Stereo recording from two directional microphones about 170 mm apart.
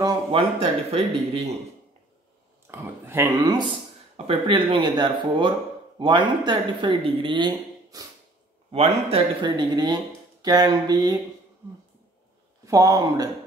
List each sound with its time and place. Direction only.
0.3 s speech: 35° right (ahead or behind)
2.7 s speech: 15° right (ahead or behind)
12.6 s speech: 20° right (ahead or behind)